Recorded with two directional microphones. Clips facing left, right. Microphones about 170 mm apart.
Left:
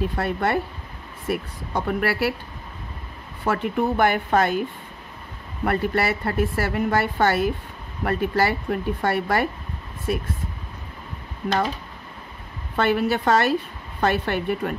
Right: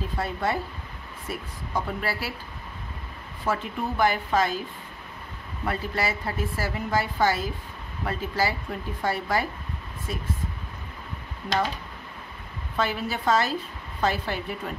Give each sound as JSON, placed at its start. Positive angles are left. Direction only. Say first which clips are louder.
{"t": 0.0, "sound": "a woman's voice", "louder": "left 5 dB", "side_deg": 65}
{"t": 3.4, "sound": "a woman's voice", "louder": "left 6 dB", "side_deg": 60}
{"t": 5.7, "sound": "a woman's voice", "louder": "left 6 dB", "side_deg": 60}
{"t": 12.7, "sound": "a woman's voice", "louder": "left 7 dB", "side_deg": 65}